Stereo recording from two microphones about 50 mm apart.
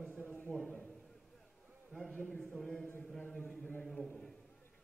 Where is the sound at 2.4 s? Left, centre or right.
Centre.